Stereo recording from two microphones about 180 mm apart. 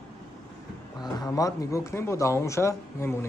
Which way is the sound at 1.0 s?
20° left (ahead or behind).